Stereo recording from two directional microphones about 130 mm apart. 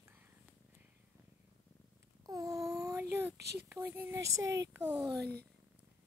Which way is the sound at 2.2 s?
25° right (ahead or behind).